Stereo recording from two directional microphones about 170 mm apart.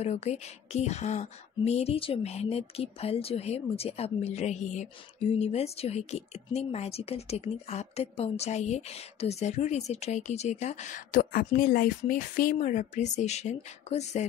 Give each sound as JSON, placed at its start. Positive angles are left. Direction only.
{"t": 0.0, "sound": "speech", "side_deg": 40}